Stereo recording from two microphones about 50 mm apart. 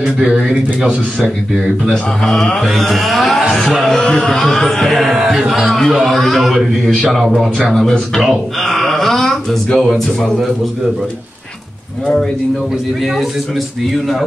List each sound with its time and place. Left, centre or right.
0.0 s speech: centre
1.9 s a man's voice: centre
3.8 s music: centre
5.0 s a man's voice: centre
8.2 s a sound: centre
9.8 s a man's voice: centre
13.0 s a man's voice: centre